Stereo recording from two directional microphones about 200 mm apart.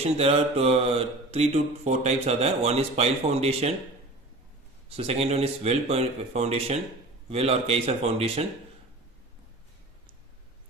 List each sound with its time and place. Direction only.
0.0 s speech: 30° right (ahead or behind)
4.8 s speech: 30° right (ahead or behind)